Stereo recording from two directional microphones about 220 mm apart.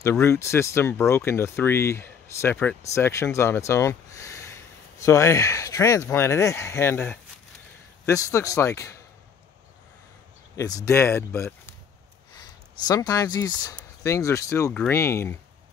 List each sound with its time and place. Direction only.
0.0 s speech: 10° left (ahead or behind)
10.5 s speech: 15° left (ahead or behind)